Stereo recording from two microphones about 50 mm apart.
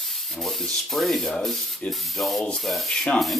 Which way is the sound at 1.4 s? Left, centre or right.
Centre.